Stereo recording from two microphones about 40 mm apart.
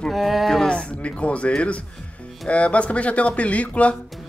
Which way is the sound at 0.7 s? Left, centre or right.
Left.